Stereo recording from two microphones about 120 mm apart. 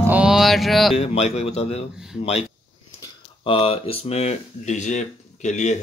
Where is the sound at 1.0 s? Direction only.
65° left (ahead or behind).